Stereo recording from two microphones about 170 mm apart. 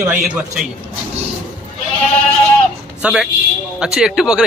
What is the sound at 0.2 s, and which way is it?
Speech, centre (ahead or behind).